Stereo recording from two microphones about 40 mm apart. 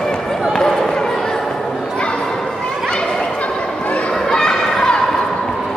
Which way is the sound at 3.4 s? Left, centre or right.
Left.